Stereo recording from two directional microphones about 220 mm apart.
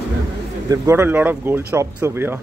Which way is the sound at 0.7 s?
10° right (ahead or behind).